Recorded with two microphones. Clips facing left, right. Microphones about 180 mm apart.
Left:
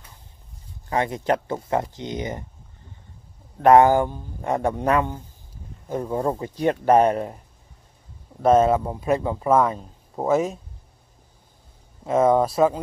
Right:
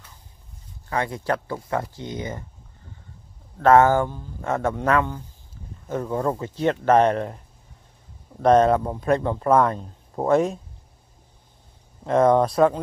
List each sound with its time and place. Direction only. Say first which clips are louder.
0.8 s speech: left 3 dB; 20° left (ahead or behind)
3.6 s speech: left 1 dB; 15° left (ahead or behind)
8.4 s speech: even; 5° left (ahead or behind)
12.1 s speech: right 1 dB; 5° left (ahead or behind)